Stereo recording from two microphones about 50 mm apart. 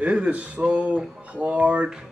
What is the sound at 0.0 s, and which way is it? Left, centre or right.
Speech, right.